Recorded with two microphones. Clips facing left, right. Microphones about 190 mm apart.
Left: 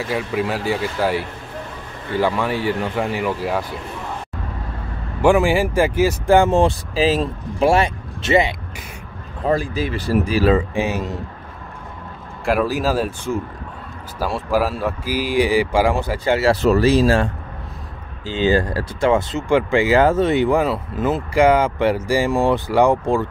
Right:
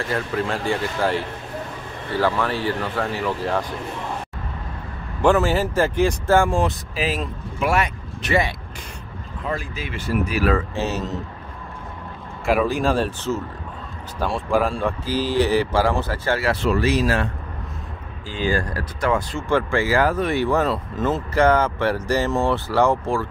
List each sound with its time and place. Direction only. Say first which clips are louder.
0.0 s speech: left 2 dB; 10° left (ahead or behind)
5.2 s speech: left 3 dB; 10° left (ahead or behind)
6.3 s speech: left 5 dB; 20° left (ahead or behind)
9.4 s speech: left 9 dB; 35° left (ahead or behind)
10.5 s speech: left 4 dB; 15° left (ahead or behind)
12.4 s speech: left 1 dB; centre (ahead or behind)
16.6 s speech: left 5 dB; 35° left (ahead or behind); by 23.2 s 15° left (ahead or behind)